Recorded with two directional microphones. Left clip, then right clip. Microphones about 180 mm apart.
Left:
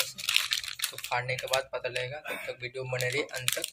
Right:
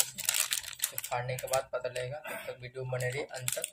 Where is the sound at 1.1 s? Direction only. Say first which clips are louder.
Left 4 dB; 5° right (ahead or behind).